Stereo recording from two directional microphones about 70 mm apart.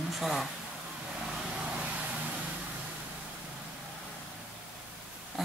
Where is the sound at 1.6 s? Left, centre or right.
Centre.